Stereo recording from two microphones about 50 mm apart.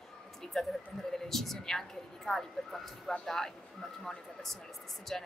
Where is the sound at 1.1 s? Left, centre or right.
Centre.